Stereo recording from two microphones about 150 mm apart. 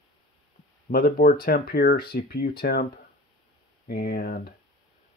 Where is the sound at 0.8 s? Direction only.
70° left (ahead or behind).